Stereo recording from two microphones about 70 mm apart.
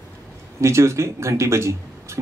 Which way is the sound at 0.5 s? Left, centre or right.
Right.